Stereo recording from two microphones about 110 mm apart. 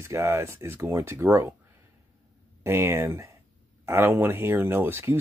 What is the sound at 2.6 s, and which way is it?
Speech, 25° right (ahead or behind).